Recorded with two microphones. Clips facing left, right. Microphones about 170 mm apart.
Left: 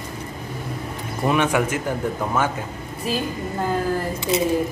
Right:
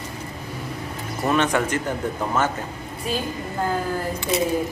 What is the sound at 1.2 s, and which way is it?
Speech, 10° left (ahead or behind).